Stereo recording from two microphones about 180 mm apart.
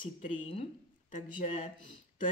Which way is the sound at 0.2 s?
35° left (ahead or behind).